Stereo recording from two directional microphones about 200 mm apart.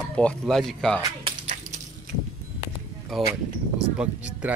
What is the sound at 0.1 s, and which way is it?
Speech, 5° left (ahead or behind).